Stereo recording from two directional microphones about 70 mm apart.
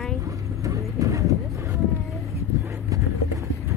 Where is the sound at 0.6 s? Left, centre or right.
Right.